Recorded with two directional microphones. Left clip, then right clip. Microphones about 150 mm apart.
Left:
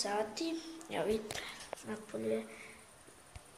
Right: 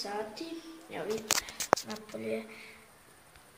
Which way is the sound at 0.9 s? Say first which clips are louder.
Left 2 dB; 20° left (ahead or behind).